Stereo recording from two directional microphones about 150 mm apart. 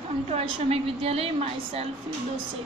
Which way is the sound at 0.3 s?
40° right (ahead or behind).